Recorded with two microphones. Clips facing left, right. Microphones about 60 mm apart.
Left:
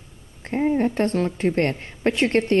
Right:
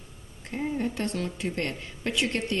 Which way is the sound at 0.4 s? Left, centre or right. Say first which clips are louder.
Left 9 dB; left.